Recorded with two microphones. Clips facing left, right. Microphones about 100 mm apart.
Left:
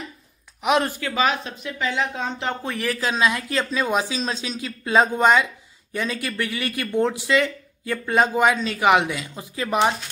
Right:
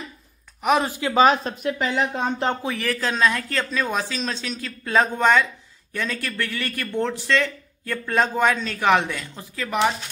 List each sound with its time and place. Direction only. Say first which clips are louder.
0.6 s a sound: even; centre (ahead or behind)
0.8 s speech: right 2 dB; 15° right (ahead or behind)
1.1 s speech: right 6 dB; 35° right (ahead or behind)
1.6 s speech: right 2 dB; 45° right (ahead or behind)
2.6 s speech: even; centre (ahead or behind)
2.9 s speech: even; 10° left (ahead or behind)